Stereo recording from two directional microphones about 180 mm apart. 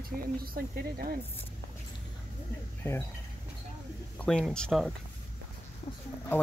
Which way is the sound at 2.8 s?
10° left (ahead or behind).